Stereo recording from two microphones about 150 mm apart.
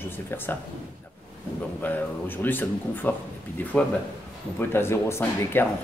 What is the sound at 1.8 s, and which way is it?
Speech, 15° left (ahead or behind).